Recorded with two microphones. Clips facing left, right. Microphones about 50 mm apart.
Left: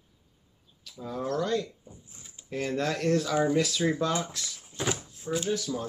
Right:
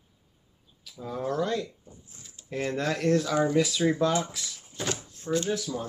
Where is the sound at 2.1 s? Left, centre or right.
Left.